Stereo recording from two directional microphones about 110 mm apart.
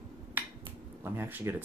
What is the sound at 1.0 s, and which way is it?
Speech, 20° right (ahead or behind).